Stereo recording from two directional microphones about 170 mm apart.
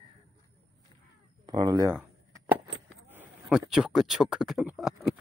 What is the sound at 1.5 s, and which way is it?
Speech, 25° right (ahead or behind).